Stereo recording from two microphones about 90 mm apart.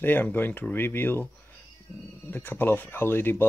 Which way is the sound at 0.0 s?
20° left (ahead or behind).